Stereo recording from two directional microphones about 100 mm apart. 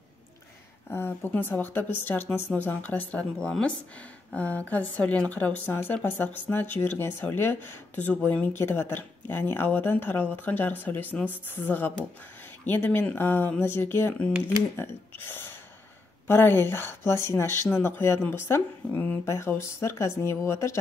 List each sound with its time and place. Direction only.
0.8 s a woman's voice: 20° left (ahead or behind)
15.2 s gasp: 20° left (ahead or behind)
16.3 s speech: 25° left (ahead or behind)